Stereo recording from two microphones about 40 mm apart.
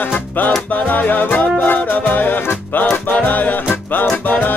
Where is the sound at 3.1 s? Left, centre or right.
Left.